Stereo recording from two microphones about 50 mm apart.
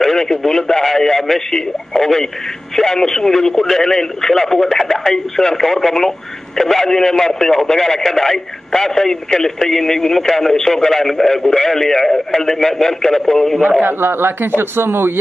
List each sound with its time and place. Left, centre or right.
0.0 s speech: centre
13.6 s a man's voice: right